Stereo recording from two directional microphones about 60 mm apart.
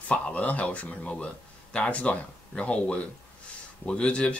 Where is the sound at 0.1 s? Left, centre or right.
Left.